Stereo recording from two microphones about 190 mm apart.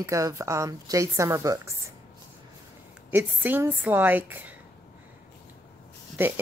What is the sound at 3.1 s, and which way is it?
A woman's voice, 10° right (ahead or behind).